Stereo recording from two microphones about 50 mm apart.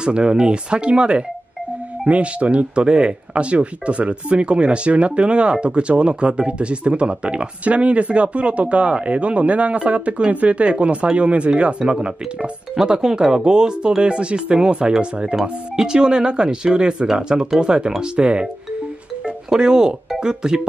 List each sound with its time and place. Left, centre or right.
0.0 s speech: centre